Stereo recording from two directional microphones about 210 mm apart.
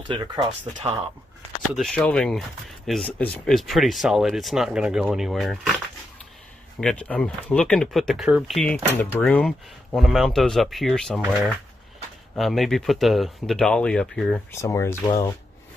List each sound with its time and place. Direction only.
0.1 s speech: 25° right (ahead or behind)
1.8 s speech: 5° left (ahead or behind)
6.8 s speech: 5° left (ahead or behind)
14.5 s speech: 15° left (ahead or behind)